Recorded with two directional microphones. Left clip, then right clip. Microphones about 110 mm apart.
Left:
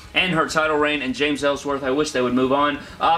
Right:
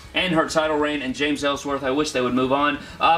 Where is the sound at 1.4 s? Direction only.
10° left (ahead or behind).